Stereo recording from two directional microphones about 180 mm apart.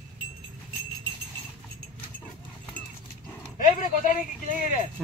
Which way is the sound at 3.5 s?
45° left (ahead or behind).